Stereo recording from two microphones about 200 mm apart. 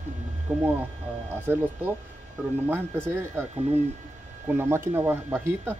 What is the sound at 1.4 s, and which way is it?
Speech, 10° right (ahead or behind).